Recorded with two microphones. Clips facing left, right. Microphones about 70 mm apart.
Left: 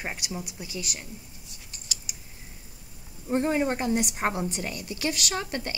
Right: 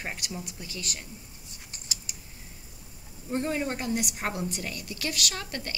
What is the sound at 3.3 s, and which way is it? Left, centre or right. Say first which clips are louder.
A woman's voice: left 5 dB; left.